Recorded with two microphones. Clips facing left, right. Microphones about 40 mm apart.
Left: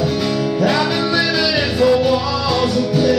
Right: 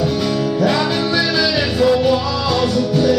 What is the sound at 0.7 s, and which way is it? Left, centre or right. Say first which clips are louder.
Music: even; centre.